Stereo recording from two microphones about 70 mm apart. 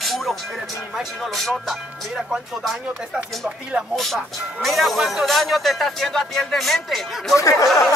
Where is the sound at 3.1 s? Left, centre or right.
Centre.